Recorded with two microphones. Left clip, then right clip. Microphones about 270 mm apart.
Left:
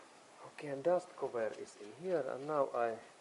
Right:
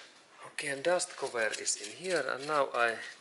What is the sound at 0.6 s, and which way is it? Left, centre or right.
Speech, centre.